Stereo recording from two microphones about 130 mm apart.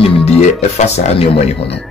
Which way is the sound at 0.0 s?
55° left (ahead or behind).